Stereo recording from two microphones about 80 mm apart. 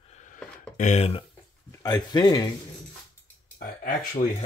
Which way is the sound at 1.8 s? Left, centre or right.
Left.